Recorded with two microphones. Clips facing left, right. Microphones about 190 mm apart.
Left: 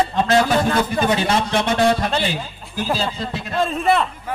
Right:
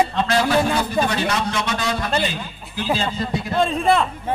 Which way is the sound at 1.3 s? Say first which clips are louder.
Left 4 dB; 55° left (ahead or behind).